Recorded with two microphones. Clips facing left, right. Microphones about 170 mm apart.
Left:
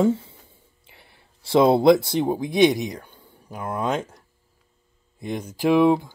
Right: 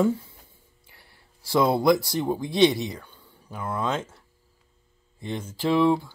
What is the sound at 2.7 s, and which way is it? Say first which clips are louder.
Speech: left 3 dB; 45° left (ahead or behind).